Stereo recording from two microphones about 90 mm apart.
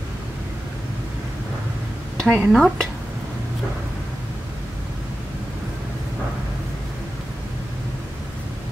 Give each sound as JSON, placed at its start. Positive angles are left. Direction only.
{"t": 2.2, "sound": "speech", "side_deg": -15}
{"t": 2.5, "sound": "speech", "side_deg": 5}